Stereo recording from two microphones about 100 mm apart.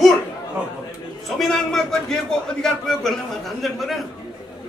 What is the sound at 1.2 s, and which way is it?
A man's voice, centre (ahead or behind).